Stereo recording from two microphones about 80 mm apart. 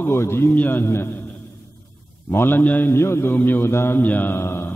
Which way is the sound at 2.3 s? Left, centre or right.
Left.